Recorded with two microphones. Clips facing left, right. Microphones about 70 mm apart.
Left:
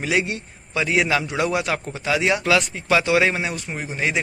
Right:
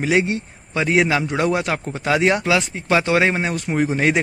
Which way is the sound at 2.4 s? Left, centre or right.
Right.